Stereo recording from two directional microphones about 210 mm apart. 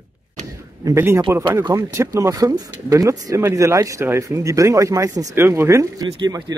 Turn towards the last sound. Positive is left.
turn(degrees=-20)  # may be behind; listen again after turning